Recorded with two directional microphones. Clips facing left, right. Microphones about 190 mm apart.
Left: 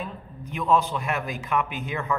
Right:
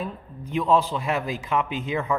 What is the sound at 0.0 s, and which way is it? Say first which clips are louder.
A man's voice: right 3 dB; 30° right (ahead or behind).